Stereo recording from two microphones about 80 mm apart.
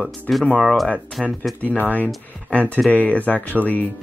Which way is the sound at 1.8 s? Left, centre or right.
Left.